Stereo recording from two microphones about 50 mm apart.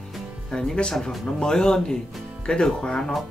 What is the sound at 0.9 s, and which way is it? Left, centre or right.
Speech, centre.